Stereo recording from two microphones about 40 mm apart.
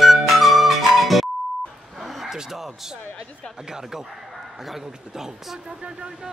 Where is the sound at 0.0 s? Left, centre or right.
Centre.